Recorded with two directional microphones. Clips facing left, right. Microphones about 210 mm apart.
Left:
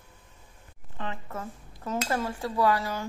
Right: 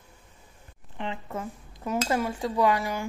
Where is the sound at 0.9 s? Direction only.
20° right (ahead or behind).